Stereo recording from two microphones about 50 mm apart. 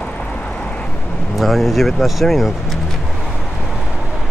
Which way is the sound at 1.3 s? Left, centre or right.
Centre.